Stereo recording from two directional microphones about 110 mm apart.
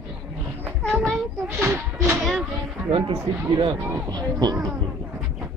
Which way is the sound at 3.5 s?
45° right (ahead or behind).